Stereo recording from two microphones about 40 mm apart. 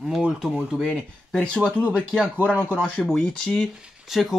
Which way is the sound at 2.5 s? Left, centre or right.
Right.